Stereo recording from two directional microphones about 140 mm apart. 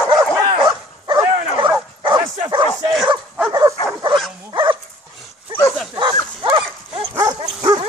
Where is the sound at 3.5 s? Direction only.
30° right (ahead or behind).